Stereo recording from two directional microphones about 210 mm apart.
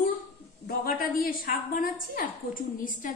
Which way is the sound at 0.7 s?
45° left (ahead or behind).